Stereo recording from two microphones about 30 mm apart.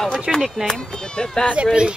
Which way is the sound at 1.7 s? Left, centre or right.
Right.